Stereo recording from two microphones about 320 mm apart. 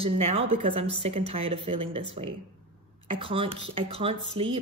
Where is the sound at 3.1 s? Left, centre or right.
Centre.